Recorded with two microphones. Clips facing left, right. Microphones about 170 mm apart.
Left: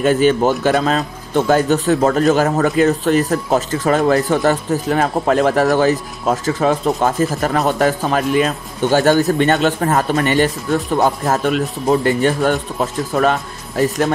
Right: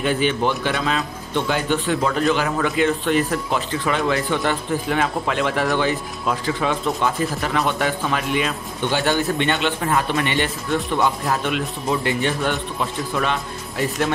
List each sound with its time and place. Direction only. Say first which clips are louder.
0.0 s speech: left 7 dB; 45° left (ahead or behind)